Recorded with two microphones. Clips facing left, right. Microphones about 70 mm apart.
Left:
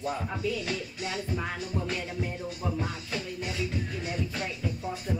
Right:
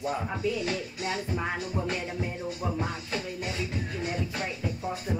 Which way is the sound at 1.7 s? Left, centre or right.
Centre.